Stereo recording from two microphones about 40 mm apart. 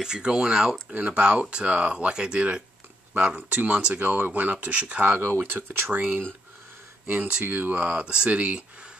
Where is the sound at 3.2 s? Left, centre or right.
Right.